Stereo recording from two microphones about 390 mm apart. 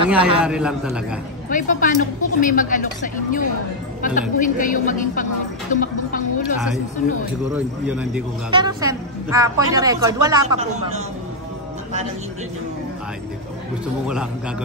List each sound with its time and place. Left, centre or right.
0.0 s speech: centre
0.4 s a man's voice: centre
1.5 s a woman's voice: centre
7.5 s speech: centre